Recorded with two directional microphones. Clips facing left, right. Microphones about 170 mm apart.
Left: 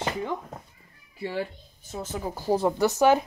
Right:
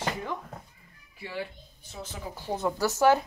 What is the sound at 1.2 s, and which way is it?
Speech, 40° left (ahead or behind).